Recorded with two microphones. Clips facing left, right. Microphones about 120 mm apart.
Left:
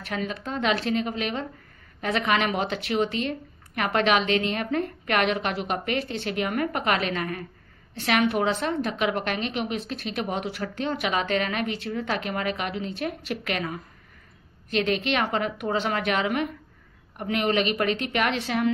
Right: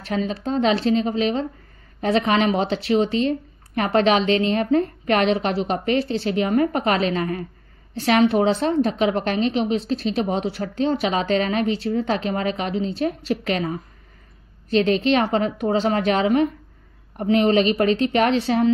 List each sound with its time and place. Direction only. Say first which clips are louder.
0.0 s a woman's voice: right 6 dB; 30° right (ahead or behind)